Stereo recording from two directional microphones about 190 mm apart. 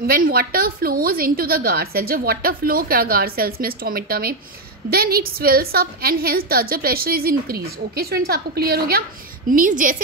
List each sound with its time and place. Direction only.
0.0 s a woman's voice: 50° right (ahead or behind)